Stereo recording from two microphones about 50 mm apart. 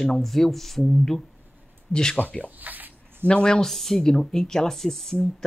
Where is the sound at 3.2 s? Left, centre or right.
Centre.